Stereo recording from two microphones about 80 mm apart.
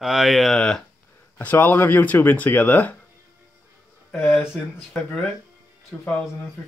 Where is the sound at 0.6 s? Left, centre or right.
Centre.